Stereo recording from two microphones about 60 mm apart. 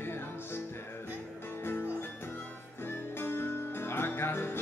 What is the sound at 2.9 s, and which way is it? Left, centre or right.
Music, left.